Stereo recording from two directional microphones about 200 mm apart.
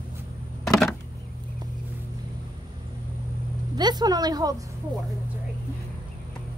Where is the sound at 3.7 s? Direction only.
20° right (ahead or behind).